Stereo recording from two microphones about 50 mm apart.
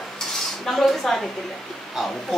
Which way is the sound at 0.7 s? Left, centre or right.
Centre.